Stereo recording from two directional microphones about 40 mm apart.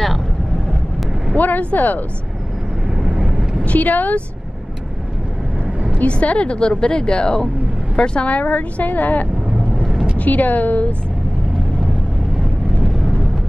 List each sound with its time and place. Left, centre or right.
1.3 s speech: left
3.1 s vehicle: centre
3.6 s a woman's voice: left
6.0 s a woman's voice: left
8.3 s a woman's voice: left
12.4 s vehicle: centre